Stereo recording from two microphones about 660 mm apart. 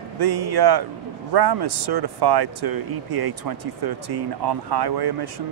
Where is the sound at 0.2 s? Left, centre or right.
Right.